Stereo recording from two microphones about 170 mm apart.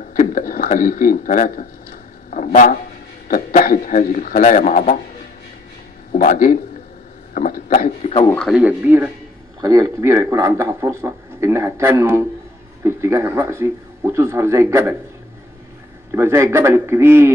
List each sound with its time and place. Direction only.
0.1 s speech: 50° left (ahead or behind)
2.3 s a sound: 50° left (ahead or behind)
3.3 s speech: 55° left (ahead or behind)
6.1 s speech: 55° left (ahead or behind)
8.0 s a man's voice: 35° left (ahead or behind)
8.4 s speech: 5° right (ahead or behind)
16.1 s speech: 15° right (ahead or behind)